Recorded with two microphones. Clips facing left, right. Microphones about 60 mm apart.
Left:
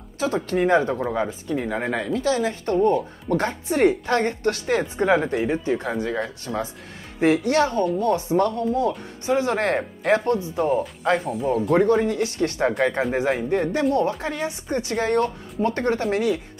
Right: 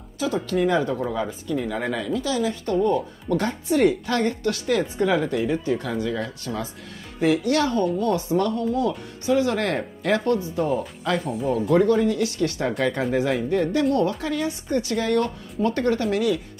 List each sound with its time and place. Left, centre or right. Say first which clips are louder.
0.2 s speech: left 1 dB; left
11.2 s speech: left 1 dB; centre
11.7 s a woman's voice: even; left